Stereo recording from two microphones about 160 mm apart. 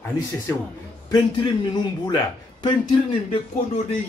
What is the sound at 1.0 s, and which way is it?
Speech, 25° left (ahead or behind).